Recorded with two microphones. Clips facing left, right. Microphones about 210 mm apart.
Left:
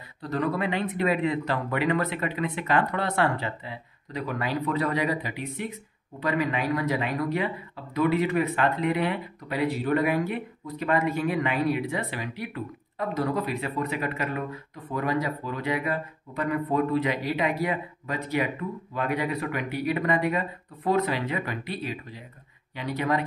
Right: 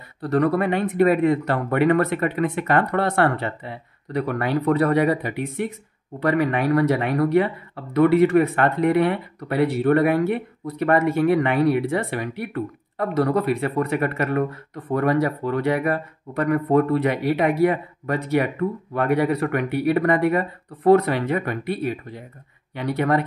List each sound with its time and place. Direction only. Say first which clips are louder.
0.2 s speech: right 8 dB; 65° right (ahead or behind)
0.6 s speech: right 7 dB; 55° right (ahead or behind)